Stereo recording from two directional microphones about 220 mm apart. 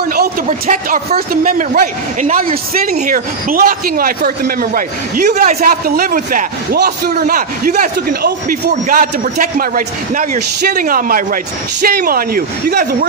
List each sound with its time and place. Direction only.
0.1 s a man's voice: 35° right (ahead or behind)
2.8 s a man's voice: 40° right (ahead or behind)